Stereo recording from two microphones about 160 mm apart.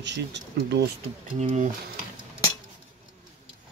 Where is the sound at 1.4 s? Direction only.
50° right (ahead or behind).